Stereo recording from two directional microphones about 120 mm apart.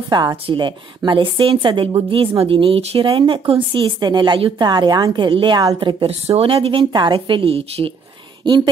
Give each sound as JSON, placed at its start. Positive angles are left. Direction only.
{"t": 0.1, "sound": "a woman's voice", "side_deg": -30}
{"t": 6.9, "sound": "a woman's voice", "side_deg": -40}